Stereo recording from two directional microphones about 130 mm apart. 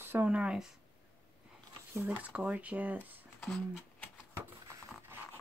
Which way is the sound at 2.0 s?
10° right (ahead or behind).